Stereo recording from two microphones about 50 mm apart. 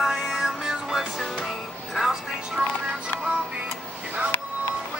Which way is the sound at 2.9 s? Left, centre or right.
Centre.